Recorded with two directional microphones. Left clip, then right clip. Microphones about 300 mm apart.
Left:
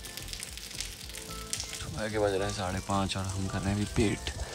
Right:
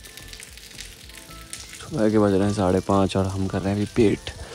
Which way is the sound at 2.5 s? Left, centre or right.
Centre.